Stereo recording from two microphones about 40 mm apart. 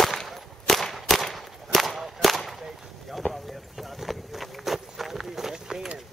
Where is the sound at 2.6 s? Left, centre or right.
Centre.